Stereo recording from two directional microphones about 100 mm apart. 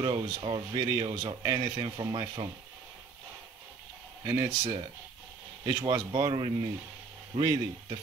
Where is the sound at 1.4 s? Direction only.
40° right (ahead or behind).